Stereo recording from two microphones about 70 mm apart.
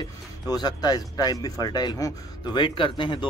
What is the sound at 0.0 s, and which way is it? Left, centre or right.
Speech, left.